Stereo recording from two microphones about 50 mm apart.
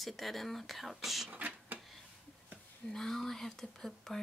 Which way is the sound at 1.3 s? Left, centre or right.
Right.